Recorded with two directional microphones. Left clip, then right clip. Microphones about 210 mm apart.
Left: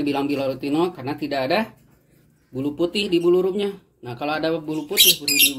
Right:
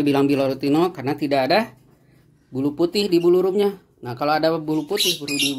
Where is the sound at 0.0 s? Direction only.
50° right (ahead or behind).